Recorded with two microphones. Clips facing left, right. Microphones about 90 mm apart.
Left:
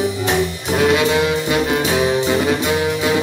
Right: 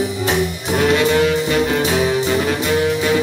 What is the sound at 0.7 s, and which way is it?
Music, 10° left (ahead or behind).